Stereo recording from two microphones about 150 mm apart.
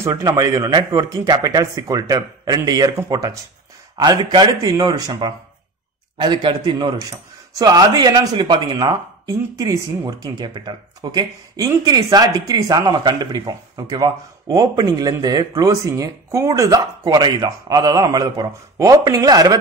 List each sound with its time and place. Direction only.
0.0 s a man's voice: 20° right (ahead or behind)